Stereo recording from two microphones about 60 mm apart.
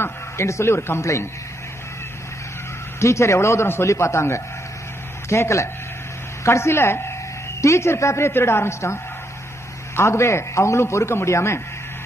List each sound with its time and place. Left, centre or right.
0.0 s speech: left
0.7 s speech: left
3.0 s a man's voice: left
8.3 s a man's voice: left